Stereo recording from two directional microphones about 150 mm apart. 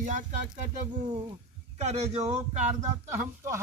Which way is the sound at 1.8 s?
45° right (ahead or behind).